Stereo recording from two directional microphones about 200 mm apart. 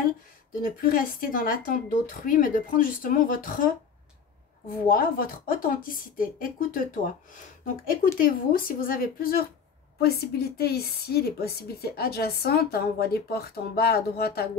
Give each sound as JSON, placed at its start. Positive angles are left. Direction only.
{"t": 0.6, "sound": "a woman's voice", "side_deg": 45}
{"t": 4.8, "sound": "a woman's voice", "side_deg": 45}